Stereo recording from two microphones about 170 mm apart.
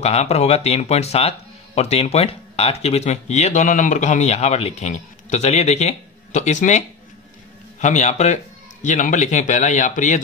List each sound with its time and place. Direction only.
0.0 s speech: 40° left (ahead or behind)
7.8 s a man's voice: 45° left (ahead or behind)